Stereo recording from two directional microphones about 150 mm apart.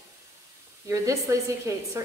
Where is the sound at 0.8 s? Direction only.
20° right (ahead or behind).